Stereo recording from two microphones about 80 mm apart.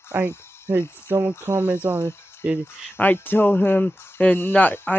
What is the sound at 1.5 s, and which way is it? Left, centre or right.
Speech, right.